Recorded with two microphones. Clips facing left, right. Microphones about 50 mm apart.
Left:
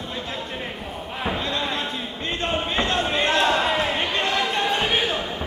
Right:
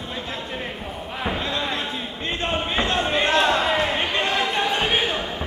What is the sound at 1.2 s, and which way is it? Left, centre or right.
Basketball bounce, centre.